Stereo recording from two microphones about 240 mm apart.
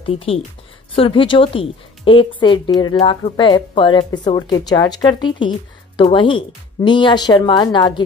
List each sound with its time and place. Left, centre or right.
0.0 s speech: left